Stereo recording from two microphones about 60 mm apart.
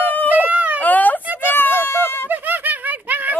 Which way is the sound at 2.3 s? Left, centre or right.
Right.